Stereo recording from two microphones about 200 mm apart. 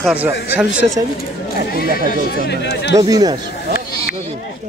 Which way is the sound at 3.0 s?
20° right (ahead or behind).